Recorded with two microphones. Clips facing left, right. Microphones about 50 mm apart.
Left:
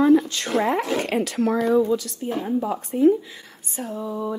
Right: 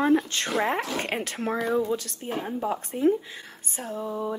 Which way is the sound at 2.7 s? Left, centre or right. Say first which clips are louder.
Left 5 dB; right.